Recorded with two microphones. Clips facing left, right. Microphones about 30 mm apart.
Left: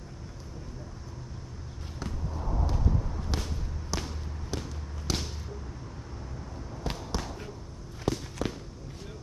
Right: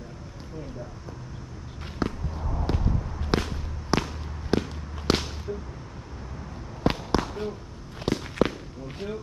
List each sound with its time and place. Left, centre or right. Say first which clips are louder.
2.0 s basketball bounce: right 10 dB; right
2.7 s a sound: right 6 dB; right
3.3 s fireworks: right 8 dB; right
6.8 s fireworks: right 10 dB; right
8.0 s walk: right 7 dB; right